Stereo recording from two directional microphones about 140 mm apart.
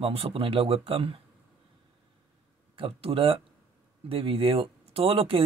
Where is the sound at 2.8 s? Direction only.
40° right (ahead or behind).